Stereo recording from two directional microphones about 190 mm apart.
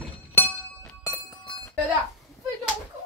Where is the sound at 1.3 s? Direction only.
20° left (ahead or behind).